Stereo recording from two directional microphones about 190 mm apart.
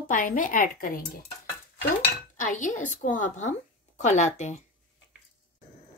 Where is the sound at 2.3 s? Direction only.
40° left (ahead or behind).